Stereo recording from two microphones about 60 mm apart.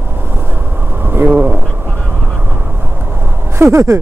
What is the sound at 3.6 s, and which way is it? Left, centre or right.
Speech, right.